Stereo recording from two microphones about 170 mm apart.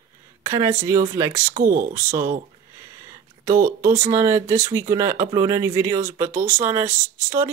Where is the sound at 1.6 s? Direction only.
55° right (ahead or behind).